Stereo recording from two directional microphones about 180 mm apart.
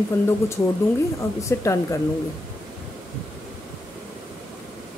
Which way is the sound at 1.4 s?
15° left (ahead or behind).